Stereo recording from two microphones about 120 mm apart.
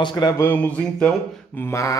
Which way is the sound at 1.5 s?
20° left (ahead or behind).